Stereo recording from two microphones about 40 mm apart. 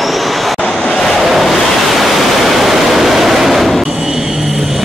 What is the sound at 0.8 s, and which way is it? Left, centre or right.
Waves, centre.